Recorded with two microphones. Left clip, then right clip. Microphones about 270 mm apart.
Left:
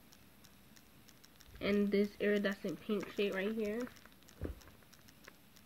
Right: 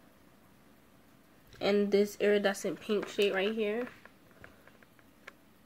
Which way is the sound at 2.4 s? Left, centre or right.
Centre.